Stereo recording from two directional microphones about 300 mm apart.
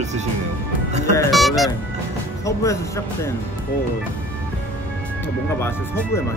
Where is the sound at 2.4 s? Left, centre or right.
Centre.